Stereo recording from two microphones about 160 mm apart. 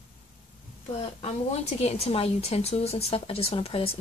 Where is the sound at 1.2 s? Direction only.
40° left (ahead or behind).